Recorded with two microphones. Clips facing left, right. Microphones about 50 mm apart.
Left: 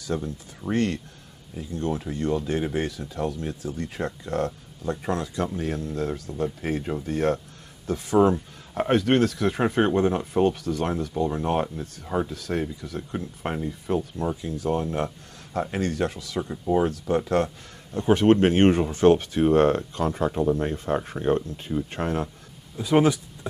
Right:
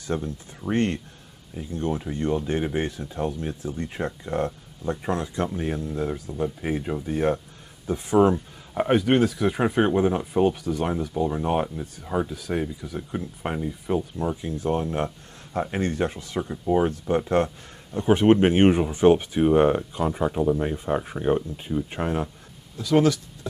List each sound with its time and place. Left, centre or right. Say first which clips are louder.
0.1 s speech: even; right
8.7 s speech: right 1 dB; centre
14.3 s speech: right 1 dB; right
16.3 s speech: right 1 dB; centre
22.8 s speech: even; left